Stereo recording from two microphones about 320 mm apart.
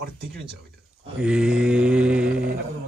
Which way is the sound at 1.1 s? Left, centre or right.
Centre.